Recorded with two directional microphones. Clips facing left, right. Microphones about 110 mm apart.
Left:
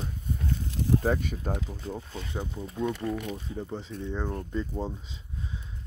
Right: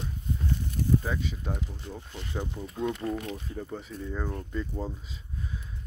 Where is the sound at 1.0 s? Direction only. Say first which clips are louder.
Left 5 dB; 50° left (ahead or behind).